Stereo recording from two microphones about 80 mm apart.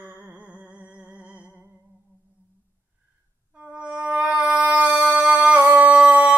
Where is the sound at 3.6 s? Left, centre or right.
Centre.